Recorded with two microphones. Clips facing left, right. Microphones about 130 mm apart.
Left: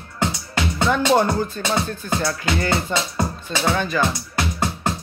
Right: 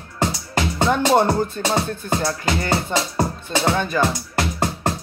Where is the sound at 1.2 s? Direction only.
30° right (ahead or behind).